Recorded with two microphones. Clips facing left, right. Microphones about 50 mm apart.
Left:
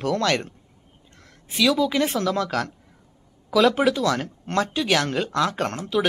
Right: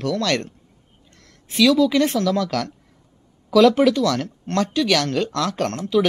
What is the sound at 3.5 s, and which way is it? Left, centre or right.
Speech, centre.